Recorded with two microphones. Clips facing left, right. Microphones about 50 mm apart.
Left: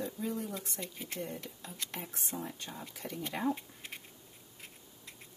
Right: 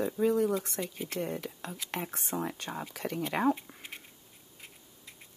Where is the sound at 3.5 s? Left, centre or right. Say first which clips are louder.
Right 4 dB; centre.